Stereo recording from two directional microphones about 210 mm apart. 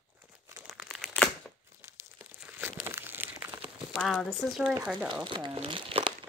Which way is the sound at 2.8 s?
10° right (ahead or behind).